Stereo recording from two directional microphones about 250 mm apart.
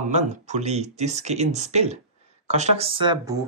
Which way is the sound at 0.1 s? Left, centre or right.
Right.